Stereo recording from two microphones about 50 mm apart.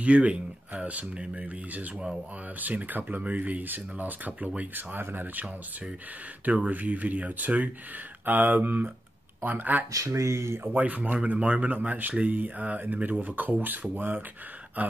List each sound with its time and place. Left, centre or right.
0.0 s speech: right
9.9 s speech: right
10.6 s speech: right